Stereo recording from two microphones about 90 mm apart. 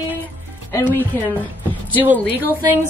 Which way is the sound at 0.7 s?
25° left (ahead or behind).